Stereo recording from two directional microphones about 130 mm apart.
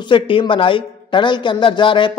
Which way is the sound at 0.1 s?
40° left (ahead or behind).